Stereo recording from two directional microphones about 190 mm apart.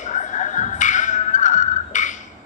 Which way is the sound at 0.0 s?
40° left (ahead or behind).